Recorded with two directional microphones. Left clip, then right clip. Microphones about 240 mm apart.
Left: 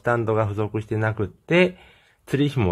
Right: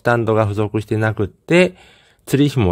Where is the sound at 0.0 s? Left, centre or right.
Right.